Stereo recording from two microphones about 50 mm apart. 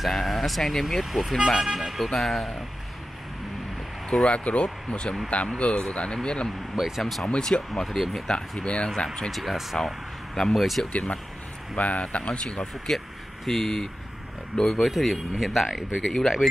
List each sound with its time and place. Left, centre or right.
0.0 s speech: centre
4.3 s speech: left
6.7 s speech: centre
7.2 s speech: centre
7.7 s speech: centre
8.3 s speech: centre
9.3 s speech: centre
10.9 s speech: left
12.9 s speech: centre